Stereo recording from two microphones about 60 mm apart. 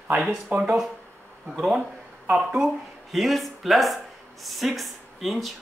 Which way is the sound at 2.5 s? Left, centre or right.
Centre.